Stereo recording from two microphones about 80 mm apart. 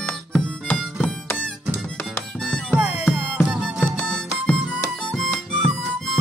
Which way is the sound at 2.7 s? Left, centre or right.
Centre.